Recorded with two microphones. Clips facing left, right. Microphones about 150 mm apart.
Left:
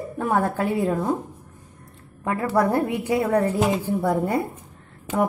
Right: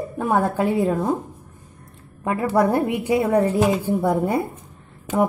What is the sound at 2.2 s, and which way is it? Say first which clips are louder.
A woman's voice: right 2 dB; 15° right (ahead or behind).